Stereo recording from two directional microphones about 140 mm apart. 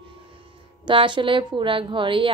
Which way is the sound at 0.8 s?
35° right (ahead or behind).